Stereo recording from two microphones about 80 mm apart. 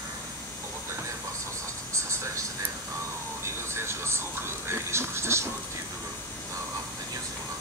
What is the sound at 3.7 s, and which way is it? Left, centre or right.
Speech, right.